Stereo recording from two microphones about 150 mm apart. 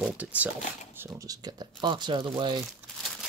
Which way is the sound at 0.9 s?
15° right (ahead or behind).